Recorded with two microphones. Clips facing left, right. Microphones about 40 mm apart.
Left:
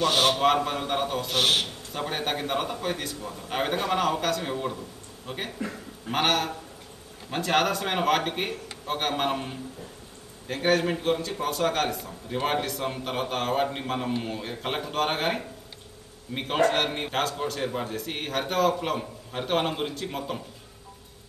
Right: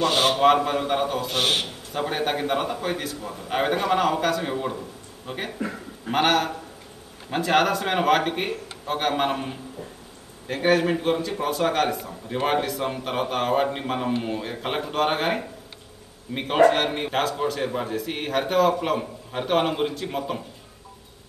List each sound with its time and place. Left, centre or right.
0.0 s a man's voice: centre